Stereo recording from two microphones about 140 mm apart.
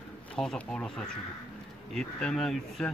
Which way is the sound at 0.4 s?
5° left (ahead or behind).